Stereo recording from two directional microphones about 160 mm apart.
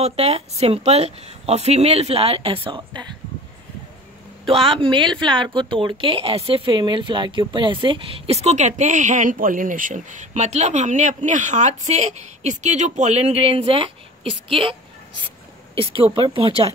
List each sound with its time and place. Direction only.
0.0 s speech: 40° right (ahead or behind)
4.5 s speech: 35° right (ahead or behind)